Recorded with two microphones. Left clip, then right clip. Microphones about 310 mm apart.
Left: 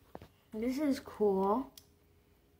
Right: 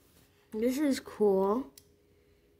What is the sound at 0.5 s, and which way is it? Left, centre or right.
Speech, centre.